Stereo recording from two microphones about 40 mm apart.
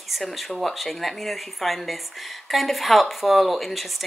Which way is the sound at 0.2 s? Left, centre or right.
Centre.